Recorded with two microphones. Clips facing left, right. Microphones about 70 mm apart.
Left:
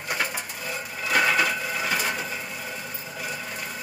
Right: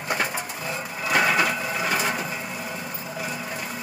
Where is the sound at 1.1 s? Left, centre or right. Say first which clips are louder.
Right 1 dB; centre.